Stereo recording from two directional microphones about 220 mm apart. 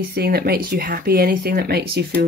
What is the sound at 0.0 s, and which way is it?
Speech, 45° right (ahead or behind).